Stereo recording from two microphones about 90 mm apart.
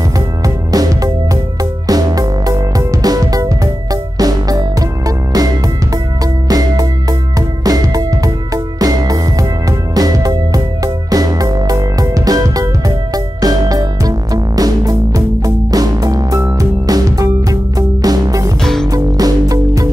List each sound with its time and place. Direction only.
0.7 s music: 45° right (ahead or behind)
6.5 s music: 45° right (ahead or behind)
18.6 s music: 5° left (ahead or behind)
18.9 s music: 45° right (ahead or behind)